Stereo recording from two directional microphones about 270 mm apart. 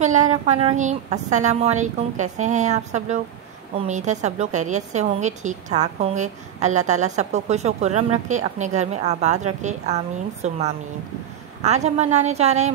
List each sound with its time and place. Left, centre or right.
0.0 s a woman's voice: right